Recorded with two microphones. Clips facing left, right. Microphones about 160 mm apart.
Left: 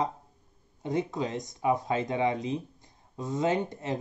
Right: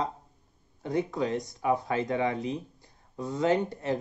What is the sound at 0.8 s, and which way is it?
Speech, 20° left (ahead or behind).